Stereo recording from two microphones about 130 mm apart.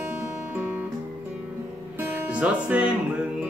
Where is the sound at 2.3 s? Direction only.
10° right (ahead or behind).